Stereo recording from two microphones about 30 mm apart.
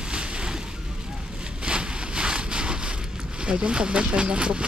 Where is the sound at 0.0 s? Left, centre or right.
Right.